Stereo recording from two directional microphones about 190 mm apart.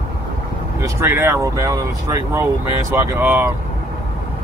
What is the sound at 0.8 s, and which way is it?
Speech, 10° right (ahead or behind).